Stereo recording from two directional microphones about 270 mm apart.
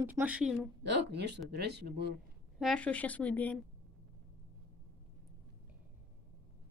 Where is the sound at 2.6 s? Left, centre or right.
Centre.